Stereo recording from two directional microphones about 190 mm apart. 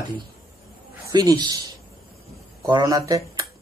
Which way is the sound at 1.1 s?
20° right (ahead or behind).